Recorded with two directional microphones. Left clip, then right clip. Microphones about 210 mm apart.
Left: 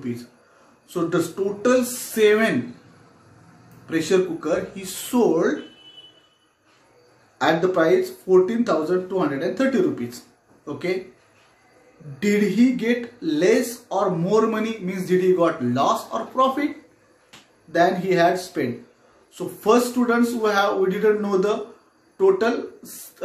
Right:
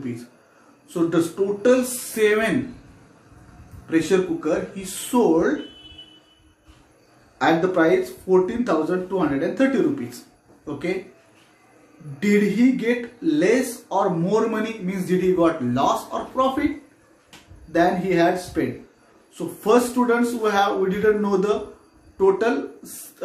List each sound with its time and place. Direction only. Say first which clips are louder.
0.8 s speech: right 2 dB; 20° left (ahead or behind)
3.8 s speech: even; 15° left (ahead or behind)
7.3 s speech: even; 15° left (ahead or behind)
12.2 s speech: even; 15° left (ahead or behind)
17.7 s speech: left 1 dB; 15° left (ahead or behind)